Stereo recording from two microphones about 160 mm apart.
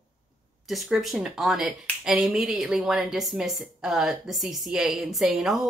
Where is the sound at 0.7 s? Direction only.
Centre (ahead or behind).